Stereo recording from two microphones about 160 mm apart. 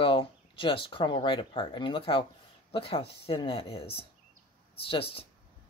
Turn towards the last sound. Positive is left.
turn(degrees=35)  # may be behind; listen again after turning